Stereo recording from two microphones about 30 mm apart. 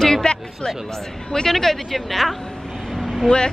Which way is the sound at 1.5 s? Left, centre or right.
Centre.